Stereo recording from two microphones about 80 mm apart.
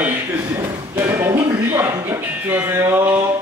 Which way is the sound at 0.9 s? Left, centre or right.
Right.